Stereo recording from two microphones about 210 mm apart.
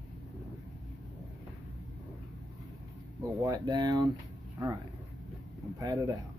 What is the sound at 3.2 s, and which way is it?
Speech, 20° right (ahead or behind).